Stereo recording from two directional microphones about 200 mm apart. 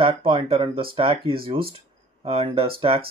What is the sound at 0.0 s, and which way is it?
Speech, 25° right (ahead or behind).